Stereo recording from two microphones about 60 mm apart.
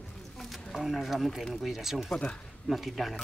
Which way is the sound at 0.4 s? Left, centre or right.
Centre.